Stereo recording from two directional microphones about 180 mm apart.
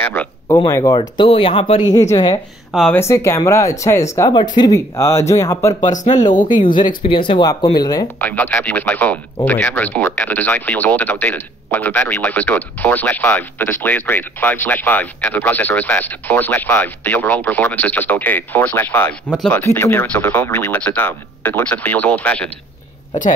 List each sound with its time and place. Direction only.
0.0 s a sound: 10° left (ahead or behind)
0.6 s speech: 20° left (ahead or behind)
2.7 s speech: centre (ahead or behind)
3.0 s speech: 15° left (ahead or behind)
5.8 s speech: 45° left (ahead or behind)
6.0 s speech: 25° left (ahead or behind)
6.3 s speech: 45° left (ahead or behind)
7.0 s speech: 30° left (ahead or behind)
8.2 s speech: 10° left (ahead or behind)